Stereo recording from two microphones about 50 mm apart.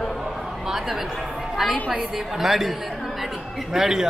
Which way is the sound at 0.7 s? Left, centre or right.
Centre.